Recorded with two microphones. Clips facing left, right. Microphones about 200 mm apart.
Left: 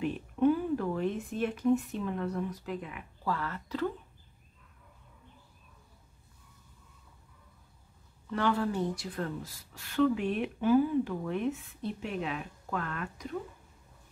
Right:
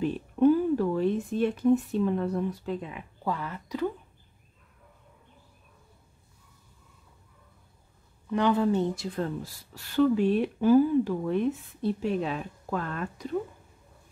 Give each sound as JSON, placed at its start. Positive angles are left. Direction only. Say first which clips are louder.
{"t": 0.0, "sound": "speech", "louder": "right 5 dB", "side_deg": -35}
{"t": 8.3, "sound": "a woman's voice", "louder": "right 6 dB", "side_deg": -15}